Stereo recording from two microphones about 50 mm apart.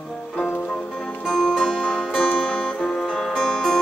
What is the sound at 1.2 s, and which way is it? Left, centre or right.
Music, centre.